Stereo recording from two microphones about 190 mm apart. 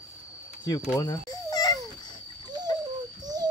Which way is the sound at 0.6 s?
20° left (ahead or behind).